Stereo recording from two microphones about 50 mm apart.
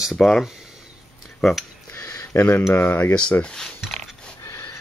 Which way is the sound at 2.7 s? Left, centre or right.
Left.